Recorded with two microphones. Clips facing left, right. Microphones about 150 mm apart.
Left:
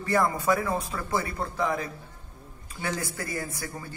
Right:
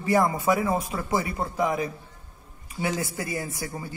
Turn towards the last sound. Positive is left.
turn(degrees=-15)  # may be behind; listen again after turning